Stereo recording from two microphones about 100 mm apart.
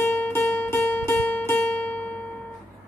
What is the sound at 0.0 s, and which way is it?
Music, 20° left (ahead or behind).